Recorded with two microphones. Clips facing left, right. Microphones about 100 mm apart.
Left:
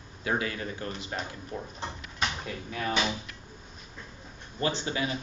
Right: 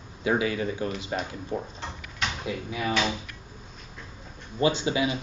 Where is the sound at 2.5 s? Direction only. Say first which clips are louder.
Right 4 dB; 10° right (ahead or behind).